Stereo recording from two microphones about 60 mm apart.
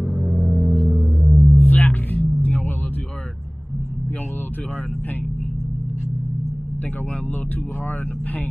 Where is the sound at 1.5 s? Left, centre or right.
Left.